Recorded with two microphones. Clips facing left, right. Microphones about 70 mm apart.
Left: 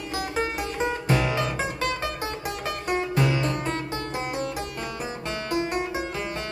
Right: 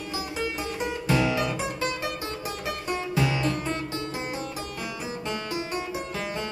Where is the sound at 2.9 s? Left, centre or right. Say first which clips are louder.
Left 3 dB; left.